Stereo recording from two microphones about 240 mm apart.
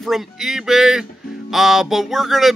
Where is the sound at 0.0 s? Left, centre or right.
Centre.